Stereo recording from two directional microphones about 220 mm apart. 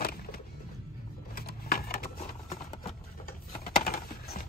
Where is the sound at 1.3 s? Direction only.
40° left (ahead or behind).